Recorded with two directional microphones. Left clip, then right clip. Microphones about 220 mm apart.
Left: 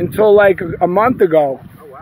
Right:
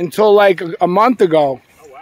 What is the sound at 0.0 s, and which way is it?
Speech, 15° right (ahead or behind).